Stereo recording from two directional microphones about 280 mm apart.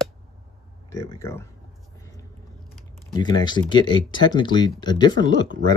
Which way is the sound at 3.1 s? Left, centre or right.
Centre.